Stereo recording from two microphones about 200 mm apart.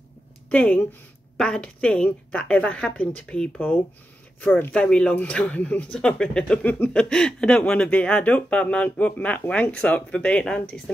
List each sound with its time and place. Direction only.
0.5 s speech: 5° left (ahead or behind)